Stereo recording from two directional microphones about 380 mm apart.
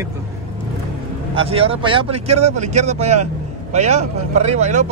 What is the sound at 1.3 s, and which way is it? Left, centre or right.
A man's voice, centre.